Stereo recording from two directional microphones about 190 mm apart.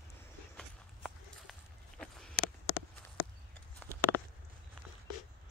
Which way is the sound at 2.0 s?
5° left (ahead or behind).